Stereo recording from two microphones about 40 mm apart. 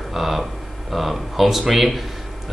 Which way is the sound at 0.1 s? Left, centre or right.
Centre.